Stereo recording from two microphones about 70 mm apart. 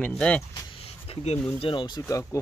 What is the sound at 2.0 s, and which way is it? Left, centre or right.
Speech, left.